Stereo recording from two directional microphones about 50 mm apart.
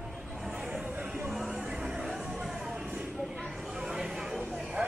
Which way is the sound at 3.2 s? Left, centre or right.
Centre.